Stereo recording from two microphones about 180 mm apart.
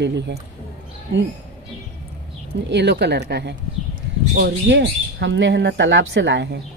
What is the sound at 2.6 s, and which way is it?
Speech, 70° right (ahead or behind).